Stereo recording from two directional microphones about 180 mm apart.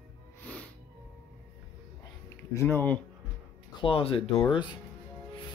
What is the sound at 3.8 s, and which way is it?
Speech, 30° left (ahead or behind).